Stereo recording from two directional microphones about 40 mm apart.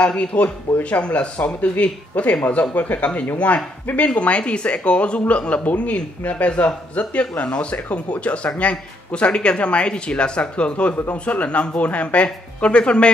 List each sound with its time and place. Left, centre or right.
0.0 s speech: left